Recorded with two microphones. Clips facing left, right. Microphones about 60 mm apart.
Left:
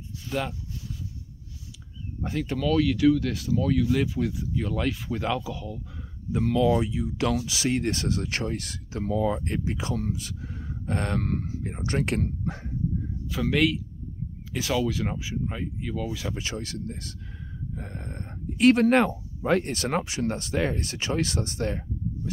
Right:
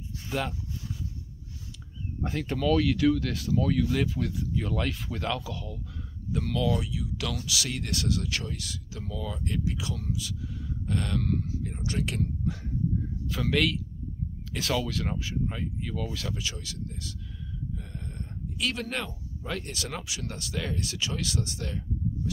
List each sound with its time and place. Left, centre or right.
0.3 s speech: centre
2.2 s speech: centre
6.3 s speech: left
13.3 s speech: centre
16.3 s speech: left